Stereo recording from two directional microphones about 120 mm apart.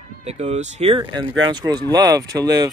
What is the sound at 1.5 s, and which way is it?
Speech, 35° right (ahead or behind).